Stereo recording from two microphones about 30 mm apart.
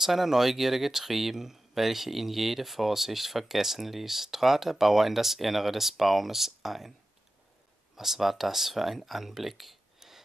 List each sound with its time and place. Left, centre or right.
0.0 s speech: centre
7.9 s speech: centre